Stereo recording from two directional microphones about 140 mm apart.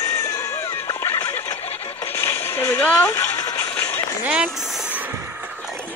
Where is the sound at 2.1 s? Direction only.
15° left (ahead or behind).